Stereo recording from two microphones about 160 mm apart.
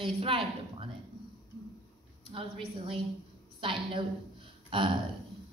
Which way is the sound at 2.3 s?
35° right (ahead or behind).